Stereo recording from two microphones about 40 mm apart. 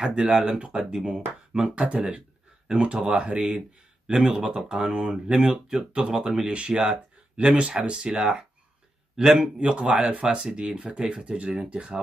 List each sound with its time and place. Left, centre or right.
0.0 s speech: right
10.3 s speech: centre